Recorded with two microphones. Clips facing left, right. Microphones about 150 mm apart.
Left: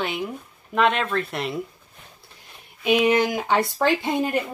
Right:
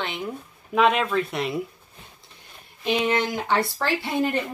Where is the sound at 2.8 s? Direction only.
10° left (ahead or behind).